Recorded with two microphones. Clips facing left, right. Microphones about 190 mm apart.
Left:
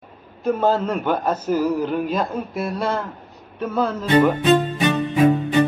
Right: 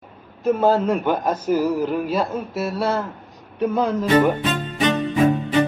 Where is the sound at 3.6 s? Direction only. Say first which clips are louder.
Right 2 dB; 15° right (ahead or behind).